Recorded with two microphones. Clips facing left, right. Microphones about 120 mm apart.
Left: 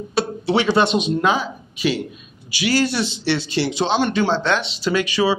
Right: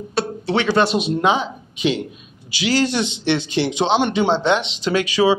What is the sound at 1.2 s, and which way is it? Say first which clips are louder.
A man's voice: right 1 dB; 20° right (ahead or behind).